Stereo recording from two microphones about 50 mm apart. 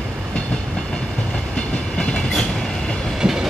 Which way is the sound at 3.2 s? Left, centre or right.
Centre.